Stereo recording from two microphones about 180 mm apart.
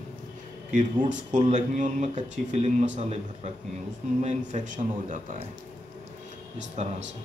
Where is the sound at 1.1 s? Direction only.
40° right (ahead or behind).